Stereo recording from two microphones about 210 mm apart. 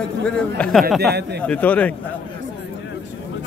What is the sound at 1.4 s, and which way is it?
Speech, 5° left (ahead or behind).